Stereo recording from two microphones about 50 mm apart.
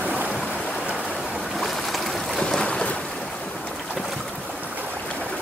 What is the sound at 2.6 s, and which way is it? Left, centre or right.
Boat, centre.